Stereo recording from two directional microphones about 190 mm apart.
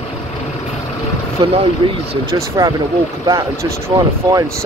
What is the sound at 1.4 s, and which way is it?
Speech, 25° right (ahead or behind).